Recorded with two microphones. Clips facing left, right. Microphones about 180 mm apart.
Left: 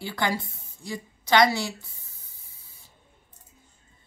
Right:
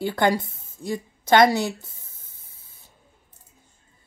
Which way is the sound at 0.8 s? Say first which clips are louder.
Right 6 dB; 50° right (ahead or behind).